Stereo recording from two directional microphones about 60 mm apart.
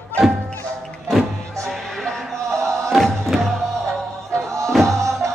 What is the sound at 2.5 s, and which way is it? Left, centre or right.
Music, right.